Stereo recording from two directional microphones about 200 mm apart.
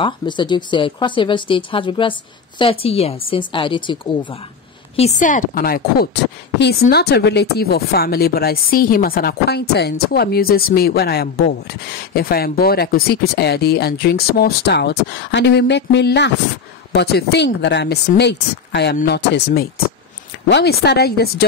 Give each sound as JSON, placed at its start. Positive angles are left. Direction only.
{"t": 0.0, "sound": "speech", "side_deg": 25}
{"t": 4.9, "sound": "speech", "side_deg": 35}